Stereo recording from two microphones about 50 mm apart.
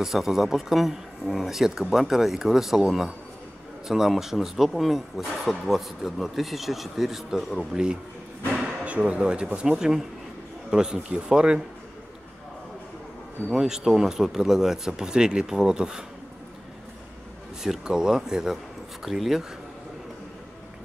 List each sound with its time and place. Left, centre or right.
0.0 s a man's voice: centre
7.7 s speech: centre
13.5 s speech: centre
17.8 s a man's voice: centre